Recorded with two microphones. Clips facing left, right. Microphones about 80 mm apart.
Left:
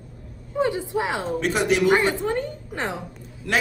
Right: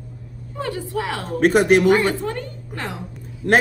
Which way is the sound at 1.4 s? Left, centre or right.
Right.